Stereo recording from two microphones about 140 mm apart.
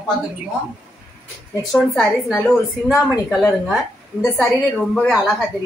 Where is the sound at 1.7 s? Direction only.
5° left (ahead or behind).